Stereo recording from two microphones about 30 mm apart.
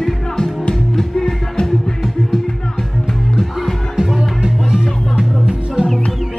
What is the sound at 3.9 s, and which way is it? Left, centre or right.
Music, right.